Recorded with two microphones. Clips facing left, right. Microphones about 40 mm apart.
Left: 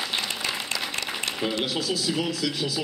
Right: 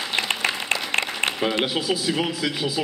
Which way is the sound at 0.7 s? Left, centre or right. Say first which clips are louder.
Right 6 dB; right.